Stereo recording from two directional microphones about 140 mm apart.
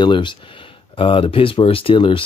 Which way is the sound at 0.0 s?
35° left (ahead or behind).